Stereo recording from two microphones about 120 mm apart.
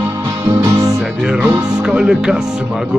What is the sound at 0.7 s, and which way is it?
Music, 30° right (ahead or behind).